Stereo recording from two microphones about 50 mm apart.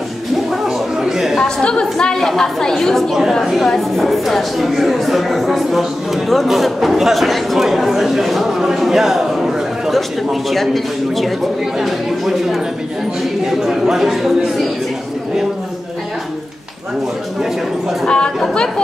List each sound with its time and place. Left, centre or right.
0.5 s chatter: centre
1.3 s a woman's voice: centre
18.0 s speech: centre